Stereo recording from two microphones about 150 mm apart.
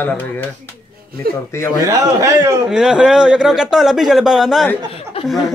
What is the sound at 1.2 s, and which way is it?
Speech, 90° right.